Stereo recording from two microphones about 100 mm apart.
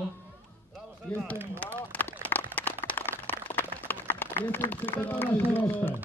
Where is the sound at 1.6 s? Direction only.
15° left (ahead or behind).